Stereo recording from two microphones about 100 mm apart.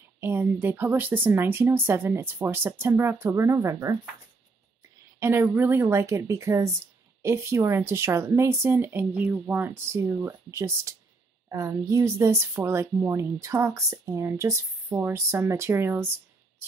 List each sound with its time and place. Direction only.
0.2 s speech: 20° right (ahead or behind)
5.2 s speech: 25° right (ahead or behind)